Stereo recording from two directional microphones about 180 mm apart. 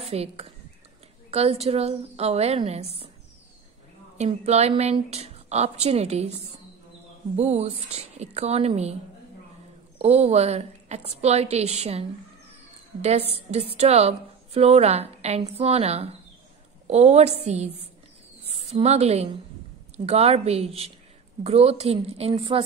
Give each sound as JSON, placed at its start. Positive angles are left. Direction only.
{"t": 0.1, "sound": "a woman's voice", "side_deg": -35}
{"t": 4.2, "sound": "a woman's voice", "side_deg": -35}
{"t": 7.3, "sound": "a woman's voice", "side_deg": -40}
{"t": 9.9, "sound": "a woman's voice", "side_deg": -35}
{"t": 13.7, "sound": "a woman's voice", "side_deg": -35}